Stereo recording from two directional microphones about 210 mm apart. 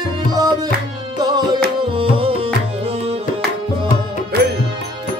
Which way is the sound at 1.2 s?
20° right (ahead or behind).